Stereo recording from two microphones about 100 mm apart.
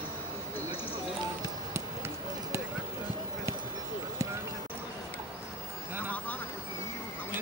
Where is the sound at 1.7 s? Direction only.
30° right (ahead or behind).